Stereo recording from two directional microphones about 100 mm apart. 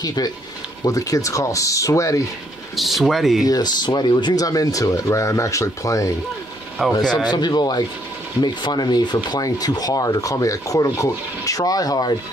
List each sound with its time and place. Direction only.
0.0 s speech: 40° left (ahead or behind)
2.7 s speech: centre (ahead or behind)
3.4 s speech: 40° left (ahead or behind)
6.9 s speech: 45° left (ahead or behind)